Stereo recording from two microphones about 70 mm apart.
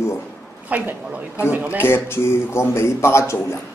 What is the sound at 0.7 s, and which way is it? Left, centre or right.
A man's voice, right.